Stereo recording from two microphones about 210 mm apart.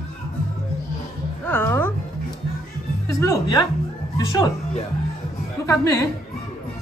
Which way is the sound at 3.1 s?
15° left (ahead or behind).